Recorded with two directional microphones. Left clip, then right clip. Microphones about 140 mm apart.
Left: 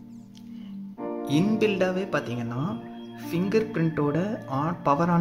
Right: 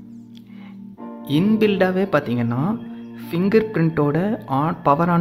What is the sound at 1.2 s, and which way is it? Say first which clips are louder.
Speech: right 6 dB; 25° right (ahead or behind).